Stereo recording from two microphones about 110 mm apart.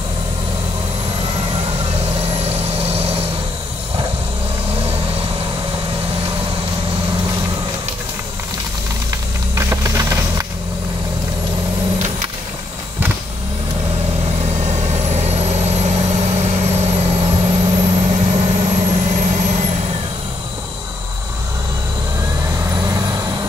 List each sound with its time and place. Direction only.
1.2 s vehicle: 55° right (ahead or behind)
2.3 s vehicle: 70° right (ahead or behind)
9.6 s a sound: 30° right (ahead or behind)
14.4 s vehicle: 90° right
22.5 s vehicle: 30° right (ahead or behind)